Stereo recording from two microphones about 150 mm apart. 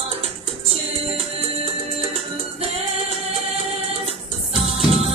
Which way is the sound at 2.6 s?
40° right (ahead or behind).